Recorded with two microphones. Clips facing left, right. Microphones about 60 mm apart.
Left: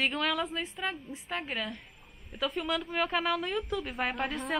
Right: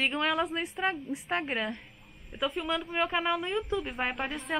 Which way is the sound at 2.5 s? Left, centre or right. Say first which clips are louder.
Even; centre.